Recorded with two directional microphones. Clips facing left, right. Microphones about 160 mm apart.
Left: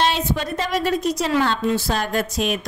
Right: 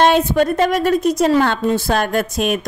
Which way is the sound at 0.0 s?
55° right (ahead or behind).